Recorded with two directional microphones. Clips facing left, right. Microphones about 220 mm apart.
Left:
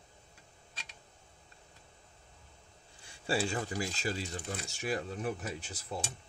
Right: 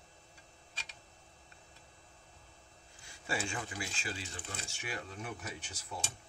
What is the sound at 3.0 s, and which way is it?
Speech, 30° left (ahead or behind).